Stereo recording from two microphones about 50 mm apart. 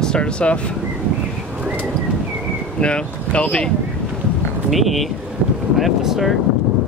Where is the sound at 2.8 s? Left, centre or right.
Left.